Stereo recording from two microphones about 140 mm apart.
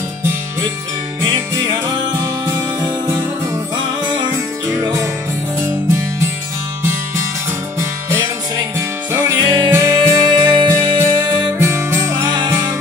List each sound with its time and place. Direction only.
1.2 s music: 30° right (ahead or behind)
4.6 s music: 25° right (ahead or behind)
8.7 s music: 20° right (ahead or behind)